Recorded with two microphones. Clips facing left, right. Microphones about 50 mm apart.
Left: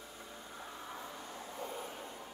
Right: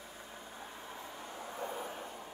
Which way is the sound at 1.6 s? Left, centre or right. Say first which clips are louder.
Right 3 dB; right.